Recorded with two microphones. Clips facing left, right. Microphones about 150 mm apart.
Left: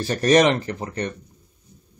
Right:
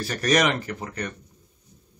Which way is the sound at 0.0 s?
30° left (ahead or behind).